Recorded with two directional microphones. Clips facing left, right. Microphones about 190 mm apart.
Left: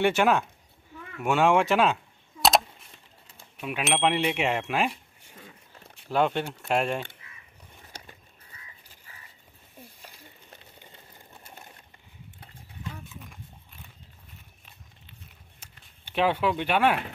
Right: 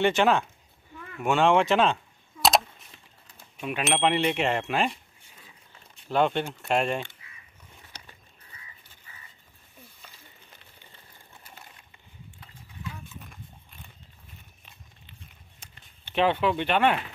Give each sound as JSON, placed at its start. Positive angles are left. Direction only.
{"t": 0.0, "sound": "speech", "side_deg": 10}
{"t": 3.5, "sound": "speech", "side_deg": 5}
{"t": 6.0, "sound": "speech", "side_deg": 5}
{"t": 7.9, "sound": "crow", "side_deg": 45}
{"t": 15.6, "sound": "a sound", "side_deg": 10}